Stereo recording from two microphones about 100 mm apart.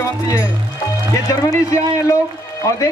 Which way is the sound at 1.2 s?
30° left (ahead or behind).